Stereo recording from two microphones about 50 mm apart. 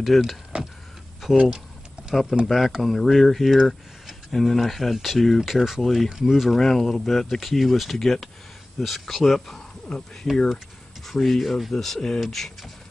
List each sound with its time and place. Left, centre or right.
0.1 s speech: centre
0.5 s vehicle: right
1.3 s speech: right
2.0 s a sound: centre
2.4 s speech: centre